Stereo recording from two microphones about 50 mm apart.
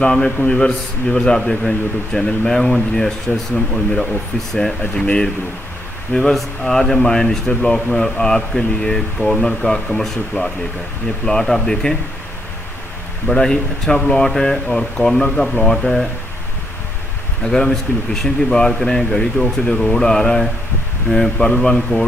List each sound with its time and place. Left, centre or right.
0.0 s speech: centre
13.3 s speech: centre
17.4 s speech: centre